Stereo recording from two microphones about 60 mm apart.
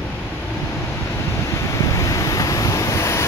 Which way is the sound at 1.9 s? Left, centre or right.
Left.